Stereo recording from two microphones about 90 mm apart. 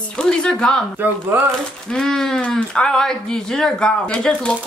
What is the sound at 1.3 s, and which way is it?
Speech, 20° right (ahead or behind).